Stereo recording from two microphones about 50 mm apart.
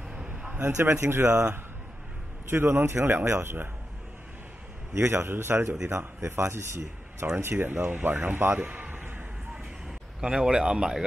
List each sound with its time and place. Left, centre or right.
0.1 s a sound: centre
0.7 s a man's voice: right
2.5 s a man's voice: right
4.9 s a man's voice: right
7.4 s speech: right
9.5 s a sound: centre